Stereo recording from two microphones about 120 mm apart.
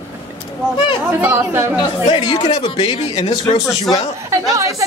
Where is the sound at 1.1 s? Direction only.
15° right (ahead or behind).